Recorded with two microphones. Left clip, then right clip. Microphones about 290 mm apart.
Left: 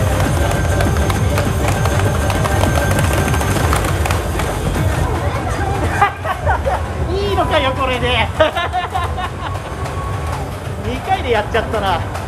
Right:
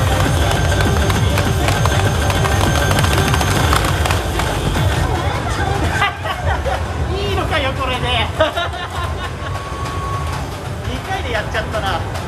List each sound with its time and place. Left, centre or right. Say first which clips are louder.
1.8 s music: right 1 dB; centre
5.9 s hubbub: left 4 dB; centre
7.2 s hubbub: left 4 dB; centre
11.2 s vehicle: left 4 dB; centre